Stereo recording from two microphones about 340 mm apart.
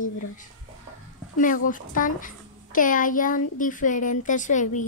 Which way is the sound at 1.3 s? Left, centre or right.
Left.